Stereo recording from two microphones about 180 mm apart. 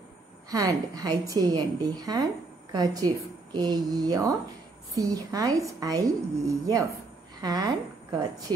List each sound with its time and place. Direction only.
0.5 s a woman's voice: 20° right (ahead or behind)